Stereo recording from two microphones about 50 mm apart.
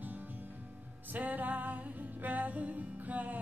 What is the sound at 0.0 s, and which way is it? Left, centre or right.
Music, right.